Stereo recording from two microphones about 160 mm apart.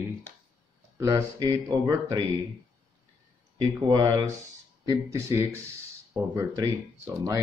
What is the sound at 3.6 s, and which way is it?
Speech, 25° right (ahead or behind).